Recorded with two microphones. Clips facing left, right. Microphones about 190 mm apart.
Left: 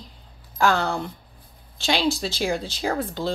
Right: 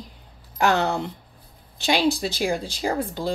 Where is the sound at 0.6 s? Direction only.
20° right (ahead or behind).